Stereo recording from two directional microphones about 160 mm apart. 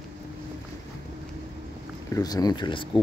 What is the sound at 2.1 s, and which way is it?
Speech, 20° left (ahead or behind).